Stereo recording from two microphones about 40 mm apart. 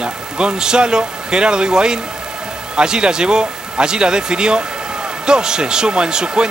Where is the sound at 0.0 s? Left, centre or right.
Right.